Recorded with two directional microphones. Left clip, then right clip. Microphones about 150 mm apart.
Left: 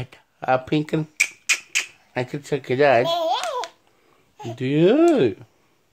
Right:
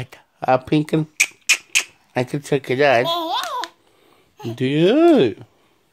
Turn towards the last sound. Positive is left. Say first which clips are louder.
# right 3 dB
turn(degrees=-40)  # may be behind; listen again after turning